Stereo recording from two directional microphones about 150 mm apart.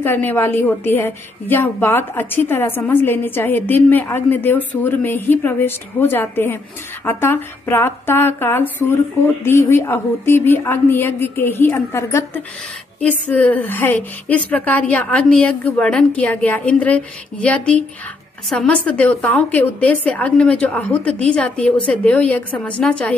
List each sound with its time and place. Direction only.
0.0 s a woman's voice: 15° left (ahead or behind)